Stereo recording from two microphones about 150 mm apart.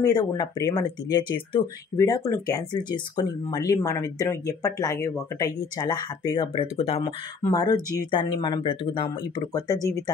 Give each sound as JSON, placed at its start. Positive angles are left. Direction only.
{"t": 0.0, "sound": "speech", "side_deg": 25}
{"t": 7.5, "sound": "speech", "side_deg": 25}
{"t": 9.5, "sound": "speech", "side_deg": 25}